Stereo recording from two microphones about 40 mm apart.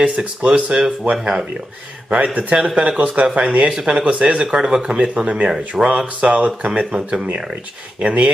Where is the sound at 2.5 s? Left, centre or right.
Right.